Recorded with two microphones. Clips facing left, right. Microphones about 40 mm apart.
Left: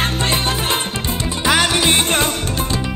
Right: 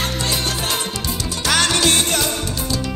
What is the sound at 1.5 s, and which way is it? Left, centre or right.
Music, centre.